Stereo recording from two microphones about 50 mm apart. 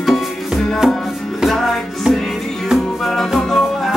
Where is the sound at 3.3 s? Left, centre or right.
Centre.